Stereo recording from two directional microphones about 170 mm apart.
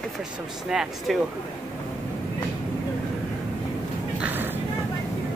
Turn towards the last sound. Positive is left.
turn(degrees=-10)  # may be behind; listen again after turning